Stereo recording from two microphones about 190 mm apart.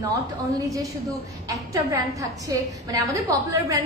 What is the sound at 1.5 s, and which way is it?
A woman's voice, 20° right (ahead or behind).